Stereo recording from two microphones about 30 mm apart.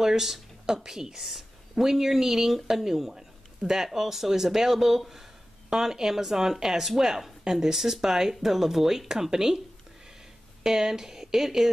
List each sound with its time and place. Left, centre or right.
0.0 s speech: centre
10.6 s speech: centre